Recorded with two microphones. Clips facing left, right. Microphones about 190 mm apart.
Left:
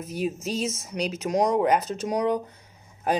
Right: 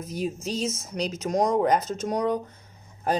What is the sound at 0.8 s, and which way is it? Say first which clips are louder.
Speech: left 1 dB; 10° left (ahead or behind).